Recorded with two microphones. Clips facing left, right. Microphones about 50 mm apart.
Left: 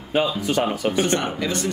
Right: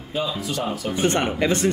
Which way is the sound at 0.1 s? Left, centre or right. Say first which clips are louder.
Left 5 dB; left.